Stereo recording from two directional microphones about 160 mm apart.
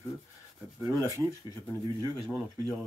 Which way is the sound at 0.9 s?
20° right (ahead or behind).